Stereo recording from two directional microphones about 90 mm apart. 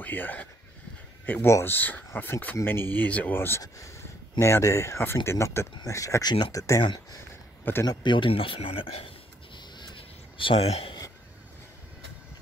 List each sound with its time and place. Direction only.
0.0 s speech: 20° left (ahead or behind); by 6.8 s 35° left (ahead or behind)
7.8 s speech: 55° left (ahead or behind); by 9.1 s 80° left
9.6 s a sound: 55° left (ahead or behind); by 11.0 s 90° left